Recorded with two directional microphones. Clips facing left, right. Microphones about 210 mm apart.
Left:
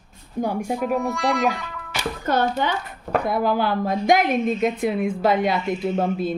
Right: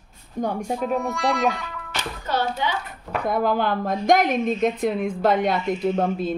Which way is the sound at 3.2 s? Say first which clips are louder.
Right 2 dB; 5° left (ahead or behind).